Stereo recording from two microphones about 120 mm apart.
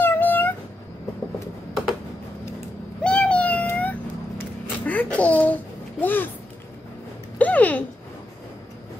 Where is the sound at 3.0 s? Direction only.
10° left (ahead or behind).